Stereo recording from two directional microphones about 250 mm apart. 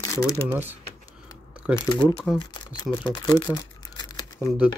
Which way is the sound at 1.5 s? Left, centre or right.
Centre.